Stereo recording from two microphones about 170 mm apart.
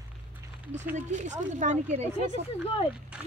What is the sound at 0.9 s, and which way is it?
Speech, 45° right (ahead or behind).